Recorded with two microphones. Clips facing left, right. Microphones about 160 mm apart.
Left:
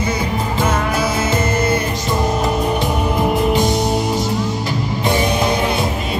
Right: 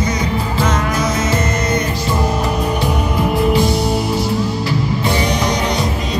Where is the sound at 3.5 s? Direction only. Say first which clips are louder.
Right 1 dB; 20° left (ahead or behind).